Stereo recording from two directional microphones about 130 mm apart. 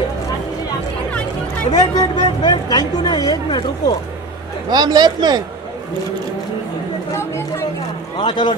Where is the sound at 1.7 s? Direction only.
30° left (ahead or behind).